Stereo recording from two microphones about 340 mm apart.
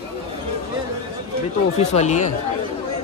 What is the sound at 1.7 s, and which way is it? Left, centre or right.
Speech, centre.